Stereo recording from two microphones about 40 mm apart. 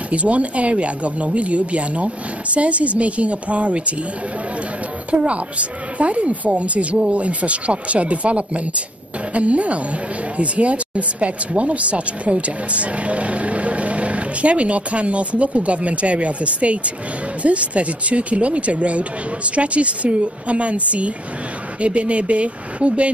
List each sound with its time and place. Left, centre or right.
0.1 s speech: right
5.1 s speech: right
21.8 s speech: right